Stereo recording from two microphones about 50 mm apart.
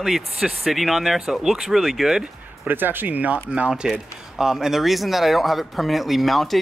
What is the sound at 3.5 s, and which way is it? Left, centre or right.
Speech, right.